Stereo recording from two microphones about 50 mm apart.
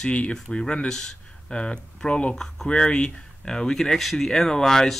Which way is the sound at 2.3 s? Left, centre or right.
Centre.